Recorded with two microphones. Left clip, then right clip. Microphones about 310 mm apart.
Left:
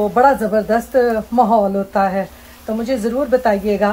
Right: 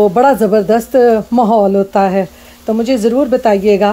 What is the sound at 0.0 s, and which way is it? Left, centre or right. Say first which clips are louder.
A woman's voice: right 4 dB; right.